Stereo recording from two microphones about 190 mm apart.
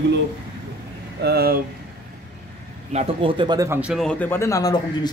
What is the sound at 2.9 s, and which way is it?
Speech, 30° right (ahead or behind).